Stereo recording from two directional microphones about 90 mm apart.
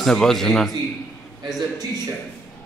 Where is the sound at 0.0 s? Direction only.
5° left (ahead or behind).